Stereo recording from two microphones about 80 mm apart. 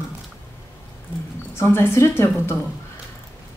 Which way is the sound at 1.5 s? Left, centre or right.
Left.